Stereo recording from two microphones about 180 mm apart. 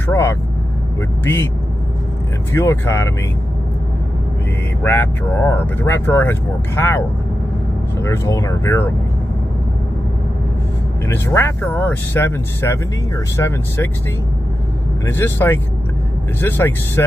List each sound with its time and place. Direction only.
0.0 s vehicle: 15° left (ahead or behind)
2.5 s speech: 15° left (ahead or behind)
4.8 s speech: 10° left (ahead or behind)
11.1 s speech: 15° left (ahead or behind)
15.0 s speech: 10° left (ahead or behind)